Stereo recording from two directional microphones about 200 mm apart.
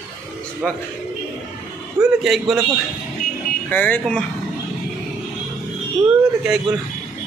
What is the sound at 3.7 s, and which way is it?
Speech, 10° left (ahead or behind).